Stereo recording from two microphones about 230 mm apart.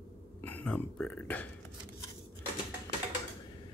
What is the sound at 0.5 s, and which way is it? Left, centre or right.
Speech, centre.